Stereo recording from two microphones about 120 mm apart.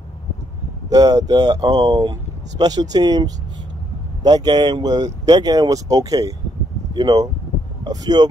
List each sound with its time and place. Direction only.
0.8 s speech: 30° right (ahead or behind)